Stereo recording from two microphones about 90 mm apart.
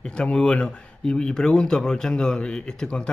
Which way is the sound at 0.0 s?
10° left (ahead or behind).